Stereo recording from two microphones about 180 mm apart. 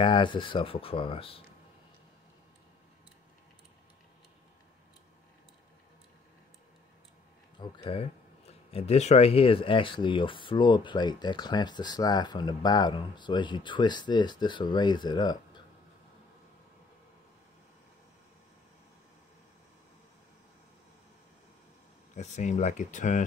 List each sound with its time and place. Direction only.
0.0 s speech: 25° left (ahead or behind)
7.5 s speech: 25° left (ahead or behind)
22.1 s speech: 40° left (ahead or behind)